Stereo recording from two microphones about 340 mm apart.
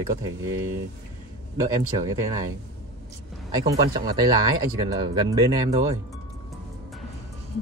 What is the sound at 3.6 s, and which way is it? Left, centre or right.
Speech, centre.